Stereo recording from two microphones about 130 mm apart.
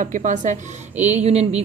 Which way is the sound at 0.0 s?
75° right (ahead or behind).